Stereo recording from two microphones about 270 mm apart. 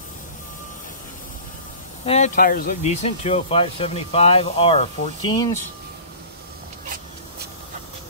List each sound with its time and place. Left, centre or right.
2.0 s speech: left